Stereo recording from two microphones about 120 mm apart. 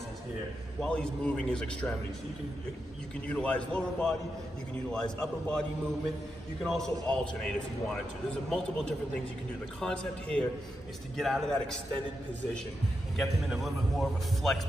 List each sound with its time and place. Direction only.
0.7 s a man's voice: 5° left (ahead or behind)
3.3 s a man's voice: 10° left (ahead or behind)
13.2 s a man's voice: centre (ahead or behind)